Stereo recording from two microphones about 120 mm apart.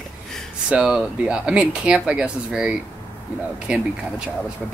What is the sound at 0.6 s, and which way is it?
Speech, 5° right (ahead or behind).